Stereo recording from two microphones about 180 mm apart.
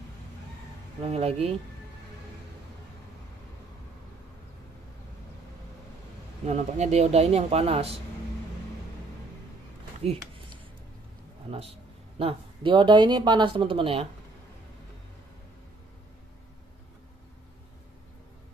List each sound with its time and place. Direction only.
1.0 s speech: 35° right (ahead or behind)
6.4 s speech: 40° right (ahead or behind)
10.0 s speech: 35° right (ahead or behind)
12.2 s speech: 30° right (ahead or behind)